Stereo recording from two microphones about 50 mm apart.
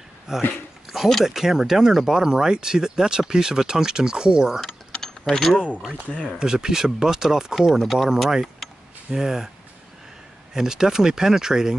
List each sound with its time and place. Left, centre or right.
0.4 s speech: left
0.8 s speech: centre
4.6 s mechanisms: centre
6.4 s speech: centre
10.5 s speech: centre